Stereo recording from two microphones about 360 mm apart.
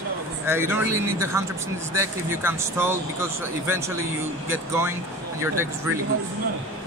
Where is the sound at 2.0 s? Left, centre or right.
Centre.